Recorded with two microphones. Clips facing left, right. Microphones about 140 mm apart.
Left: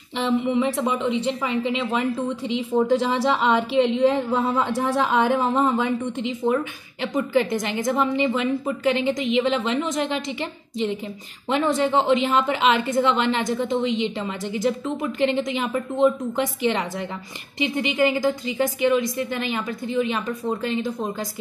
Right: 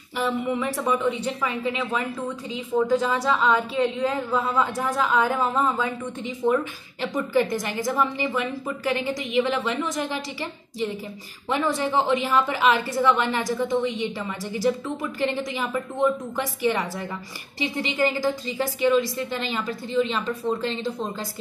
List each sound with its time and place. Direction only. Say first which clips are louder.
0.6 s a woman's voice: left 2 dB; 20° left (ahead or behind)
11.4 s a woman's voice: left 3 dB; 20° left (ahead or behind)